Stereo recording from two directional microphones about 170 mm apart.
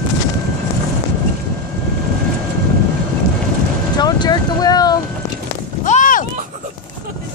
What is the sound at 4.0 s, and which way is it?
Vehicle, 25° left (ahead or behind).